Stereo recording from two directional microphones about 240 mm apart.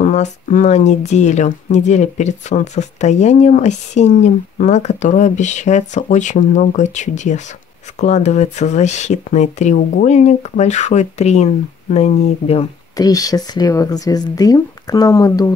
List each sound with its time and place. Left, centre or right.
0.0 s speech: left